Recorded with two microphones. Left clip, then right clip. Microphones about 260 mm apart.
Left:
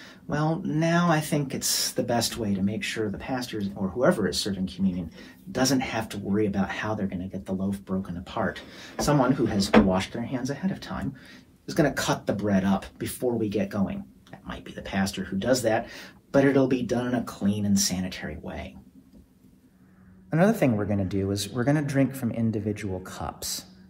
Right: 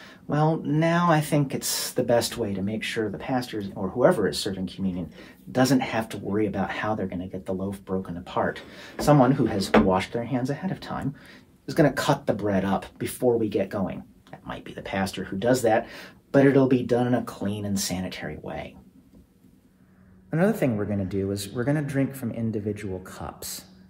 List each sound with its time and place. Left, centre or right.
0.3 s speech: right
20.2 s a man's voice: centre